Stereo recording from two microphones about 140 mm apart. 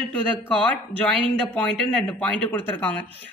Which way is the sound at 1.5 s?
10° left (ahead or behind).